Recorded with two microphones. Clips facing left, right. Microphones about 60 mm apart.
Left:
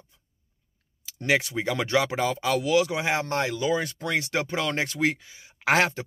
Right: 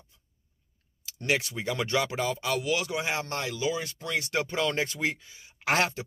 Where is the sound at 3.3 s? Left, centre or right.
Left.